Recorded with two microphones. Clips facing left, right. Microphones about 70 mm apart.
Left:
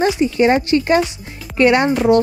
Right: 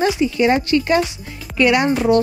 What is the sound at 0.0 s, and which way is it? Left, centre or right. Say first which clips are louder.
Speech: left 2 dB; left.